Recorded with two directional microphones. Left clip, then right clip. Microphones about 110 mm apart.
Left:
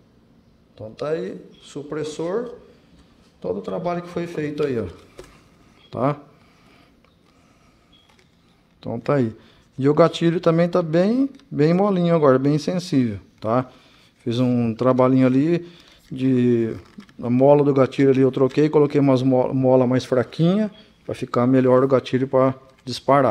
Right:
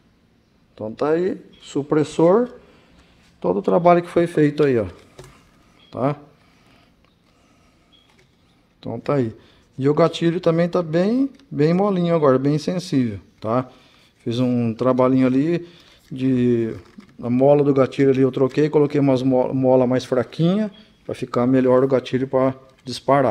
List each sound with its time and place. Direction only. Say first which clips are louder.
0.9 s speech: right 6 dB; 45° right (ahead or behind)
5.9 s speech: even; centre (ahead or behind)
8.8 s a man's voice: even; centre (ahead or behind)